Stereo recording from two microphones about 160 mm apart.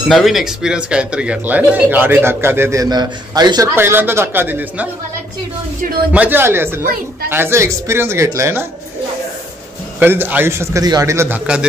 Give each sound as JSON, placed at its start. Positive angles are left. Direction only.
{"t": 0.1, "sound": "a man's voice", "side_deg": 0}
{"t": 3.7, "sound": "a man's voice", "side_deg": -15}
{"t": 6.1, "sound": "a man's voice", "side_deg": -10}
{"t": 9.9, "sound": "a man's voice", "side_deg": -10}